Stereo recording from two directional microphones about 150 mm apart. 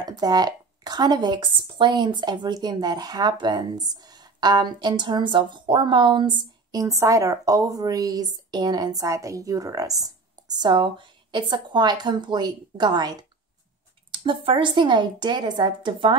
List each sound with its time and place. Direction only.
0.0 s a woman's voice: 25° right (ahead or behind)